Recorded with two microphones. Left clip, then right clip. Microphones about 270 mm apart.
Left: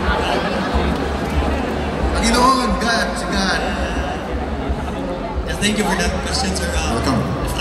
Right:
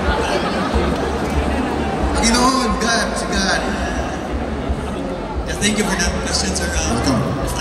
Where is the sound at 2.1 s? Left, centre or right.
Centre.